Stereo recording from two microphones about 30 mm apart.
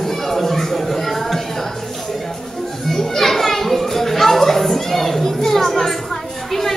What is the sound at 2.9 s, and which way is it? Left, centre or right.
Children playing, centre.